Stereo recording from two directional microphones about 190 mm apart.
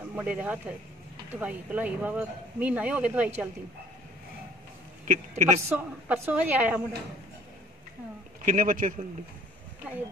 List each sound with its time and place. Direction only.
0.1 s speech: 5° right (ahead or behind)
5.0 s speech: 40° right (ahead or behind)
5.7 s speech: 10° right (ahead or behind)
8.5 s a man's voice: 45° right (ahead or behind)